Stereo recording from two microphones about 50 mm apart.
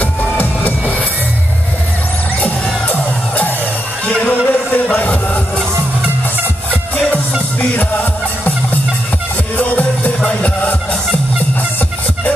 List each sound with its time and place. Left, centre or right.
0.0 s music: left
2.4 s music: left
4.0 s a sound: left
4.9 s music: left
6.7 s music: left
7.7 s music: left
9.6 s music: left